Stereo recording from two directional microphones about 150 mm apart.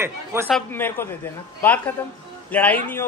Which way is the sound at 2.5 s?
10° left (ahead or behind).